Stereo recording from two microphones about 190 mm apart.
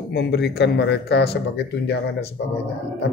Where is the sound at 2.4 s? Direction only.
60° left (ahead or behind).